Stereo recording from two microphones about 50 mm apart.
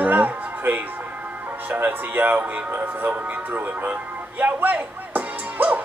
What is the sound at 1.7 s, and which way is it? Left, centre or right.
Speech, right.